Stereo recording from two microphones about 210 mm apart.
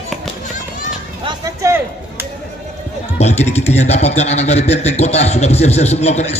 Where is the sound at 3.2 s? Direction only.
30° left (ahead or behind).